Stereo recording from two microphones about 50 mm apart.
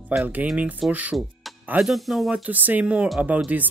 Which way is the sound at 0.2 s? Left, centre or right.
Right.